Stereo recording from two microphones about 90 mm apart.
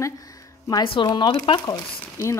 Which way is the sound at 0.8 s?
65° left (ahead or behind).